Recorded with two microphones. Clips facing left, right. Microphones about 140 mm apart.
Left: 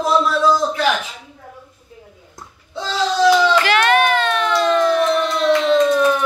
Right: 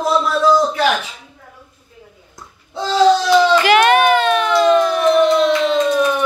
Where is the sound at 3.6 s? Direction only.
15° right (ahead or behind).